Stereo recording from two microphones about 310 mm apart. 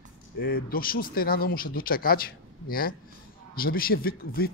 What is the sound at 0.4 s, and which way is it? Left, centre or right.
Speech, left.